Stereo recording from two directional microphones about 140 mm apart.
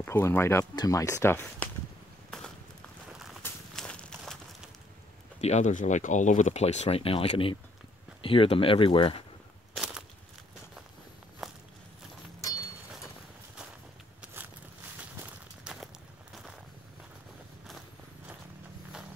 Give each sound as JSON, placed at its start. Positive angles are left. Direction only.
{"t": 0.0, "sound": "speech", "side_deg": 15}
{"t": 3.7, "sound": "a sound", "side_deg": 5}
{"t": 5.4, "sound": "speech", "side_deg": 55}
{"t": 11.4, "sound": "walk", "side_deg": 0}
{"t": 14.2, "sound": "a sound", "side_deg": -10}
{"t": 15.1, "sound": "walk", "side_deg": -10}
{"t": 17.6, "sound": "vehicle", "side_deg": 0}